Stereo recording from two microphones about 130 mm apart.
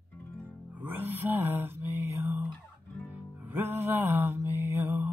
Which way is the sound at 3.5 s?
15° right (ahead or behind).